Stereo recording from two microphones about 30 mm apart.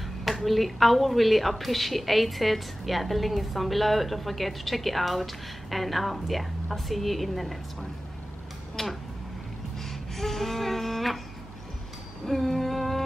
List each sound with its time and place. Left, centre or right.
0.3 s a woman's voice: centre
8.8 s speech: centre
9.8 s a sound: centre
12.3 s humming: centre